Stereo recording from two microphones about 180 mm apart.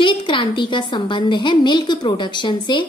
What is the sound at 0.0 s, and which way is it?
A woman's voice, 25° left (ahead or behind).